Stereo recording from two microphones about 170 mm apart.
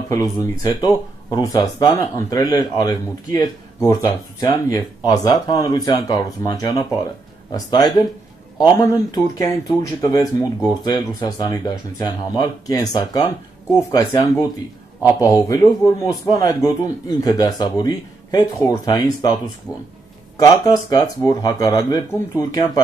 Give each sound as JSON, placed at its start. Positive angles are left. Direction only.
{"t": 0.1, "sound": "speech", "side_deg": 20}
{"t": 15.3, "sound": "speech", "side_deg": 20}